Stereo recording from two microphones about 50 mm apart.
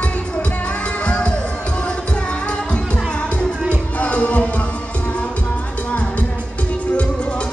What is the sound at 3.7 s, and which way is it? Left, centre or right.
Music, left.